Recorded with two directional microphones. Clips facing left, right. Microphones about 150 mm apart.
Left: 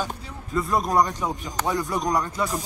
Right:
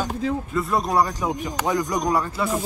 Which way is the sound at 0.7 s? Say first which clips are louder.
Even; 5° right (ahead or behind).